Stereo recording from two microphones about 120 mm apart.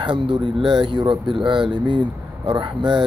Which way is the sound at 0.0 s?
40° right (ahead or behind).